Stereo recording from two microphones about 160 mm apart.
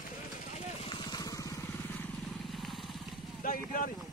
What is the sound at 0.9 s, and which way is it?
Vehicle, 25° left (ahead or behind).